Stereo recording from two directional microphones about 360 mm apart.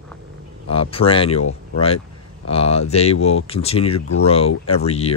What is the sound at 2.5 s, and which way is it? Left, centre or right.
Speech, centre.